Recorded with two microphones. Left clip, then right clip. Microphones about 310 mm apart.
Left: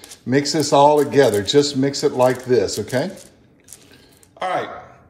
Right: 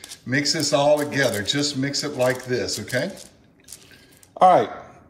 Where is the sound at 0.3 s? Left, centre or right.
Centre.